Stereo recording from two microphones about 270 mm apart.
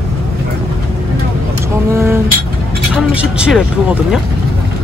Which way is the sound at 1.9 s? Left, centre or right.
Centre.